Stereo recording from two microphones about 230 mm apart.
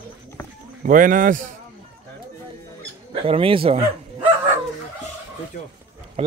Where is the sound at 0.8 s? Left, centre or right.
Right.